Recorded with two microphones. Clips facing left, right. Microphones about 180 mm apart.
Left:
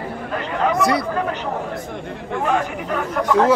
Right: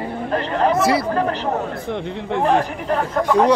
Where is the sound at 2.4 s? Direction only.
35° right (ahead or behind).